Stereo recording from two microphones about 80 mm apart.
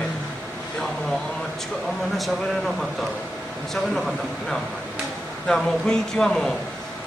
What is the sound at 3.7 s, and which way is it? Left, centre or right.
Speech, centre.